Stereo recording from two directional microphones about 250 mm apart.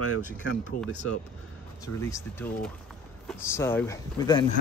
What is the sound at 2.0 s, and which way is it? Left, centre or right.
Speech, centre.